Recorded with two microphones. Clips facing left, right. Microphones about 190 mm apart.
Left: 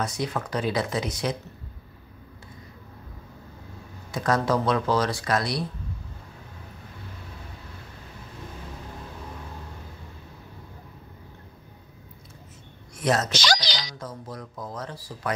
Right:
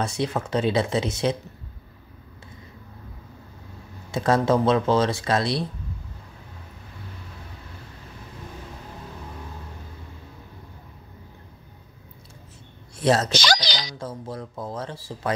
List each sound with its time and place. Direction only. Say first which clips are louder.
0.0 s speech: right 3 dB; 25° right (ahead or behind)
4.1 s speech: right 3 dB; 25° right (ahead or behind)
12.9 s speech: right 3 dB; 30° right (ahead or behind)
13.3 s a sound: right 2 dB; 60° right (ahead or behind)
13.9 s speech: right 4 dB; 30° right (ahead or behind)